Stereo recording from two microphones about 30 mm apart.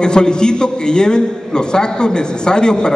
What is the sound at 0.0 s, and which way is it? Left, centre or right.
A man's voice, left.